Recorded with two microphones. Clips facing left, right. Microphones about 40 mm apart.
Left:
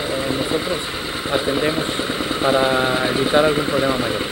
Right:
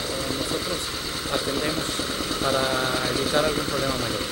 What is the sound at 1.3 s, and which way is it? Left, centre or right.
Speech, left.